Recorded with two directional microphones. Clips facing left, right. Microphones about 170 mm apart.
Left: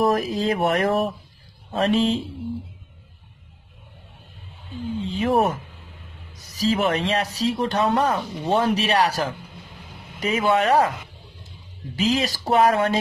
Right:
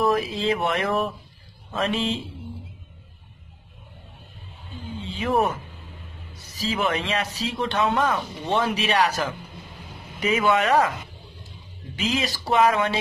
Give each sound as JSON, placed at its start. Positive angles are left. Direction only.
{"t": 0.0, "sound": "speech", "side_deg": 45}
{"t": 5.0, "sound": "speech", "side_deg": 40}
{"t": 6.5, "sound": "speech", "side_deg": 40}
{"t": 12.0, "sound": "speech", "side_deg": 35}